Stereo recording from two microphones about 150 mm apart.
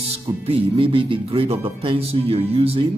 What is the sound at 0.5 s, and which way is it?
A man's voice, 40° right (ahead or behind).